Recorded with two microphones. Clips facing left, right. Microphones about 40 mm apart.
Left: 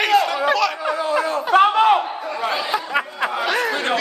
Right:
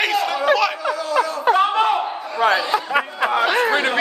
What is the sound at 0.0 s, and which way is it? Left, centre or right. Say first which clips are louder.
Chatter: left 3 dB; centre.